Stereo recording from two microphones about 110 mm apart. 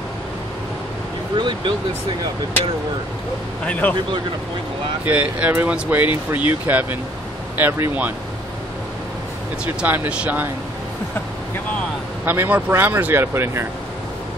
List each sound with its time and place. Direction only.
1.3 s speech: 45° right (ahead or behind)
3.6 s speech: 15° left (ahead or behind)
5.0 s speech: 15° right (ahead or behind)
9.7 s speech: 15° right (ahead or behind)
12.3 s speech: 20° right (ahead or behind)